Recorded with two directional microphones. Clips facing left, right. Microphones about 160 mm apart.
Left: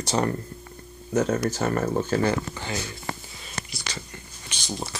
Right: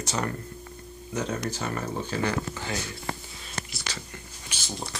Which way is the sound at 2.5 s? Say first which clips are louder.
Left 1 dB; centre (ahead or behind).